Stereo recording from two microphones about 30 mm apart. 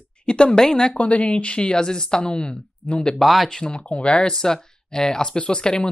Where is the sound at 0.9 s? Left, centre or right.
Left.